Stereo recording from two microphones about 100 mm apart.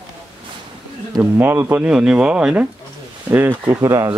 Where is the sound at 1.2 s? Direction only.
20° right (ahead or behind).